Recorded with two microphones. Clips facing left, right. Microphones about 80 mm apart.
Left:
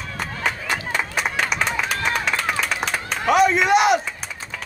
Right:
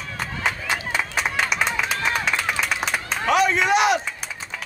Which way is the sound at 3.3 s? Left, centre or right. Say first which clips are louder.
Left 3 dB; centre.